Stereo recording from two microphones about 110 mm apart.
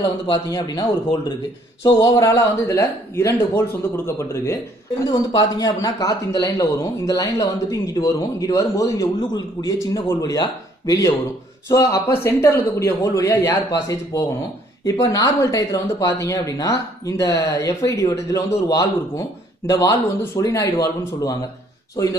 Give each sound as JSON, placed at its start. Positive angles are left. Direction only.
{"t": 0.3, "sound": "speech", "side_deg": 35}
{"t": 5.0, "sound": "speech", "side_deg": 40}